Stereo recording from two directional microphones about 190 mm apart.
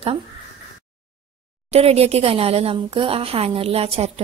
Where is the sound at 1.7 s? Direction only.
30° right (ahead or behind).